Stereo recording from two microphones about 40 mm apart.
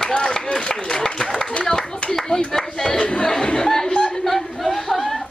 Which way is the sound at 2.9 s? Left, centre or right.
Left.